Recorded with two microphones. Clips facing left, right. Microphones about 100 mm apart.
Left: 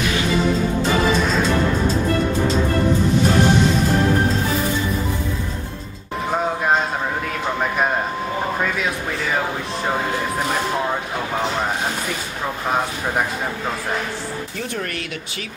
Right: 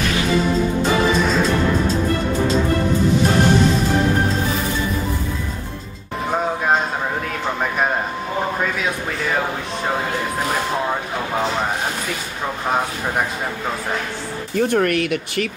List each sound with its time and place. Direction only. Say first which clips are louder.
1.2 s music: right 1 dB; centre (ahead or behind)
8.5 s speech: even; centre (ahead or behind)
14.6 s speech: right 13 dB; 55° right (ahead or behind)